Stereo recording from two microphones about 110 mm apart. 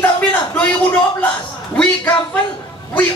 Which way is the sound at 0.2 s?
15° left (ahead or behind).